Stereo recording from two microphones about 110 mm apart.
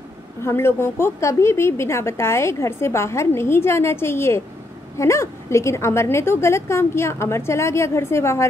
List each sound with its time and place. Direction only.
0.4 s speech: 25° left (ahead or behind)